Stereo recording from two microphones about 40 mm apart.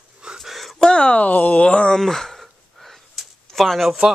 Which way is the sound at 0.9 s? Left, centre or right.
Left.